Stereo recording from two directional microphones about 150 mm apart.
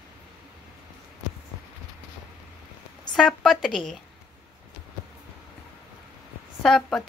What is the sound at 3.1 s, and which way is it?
Speech, 5° left (ahead or behind).